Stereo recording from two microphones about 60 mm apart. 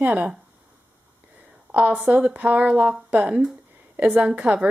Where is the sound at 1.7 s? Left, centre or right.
Right.